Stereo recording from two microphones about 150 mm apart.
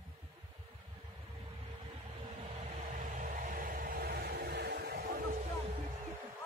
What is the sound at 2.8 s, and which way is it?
Vehicle, 60° right (ahead or behind).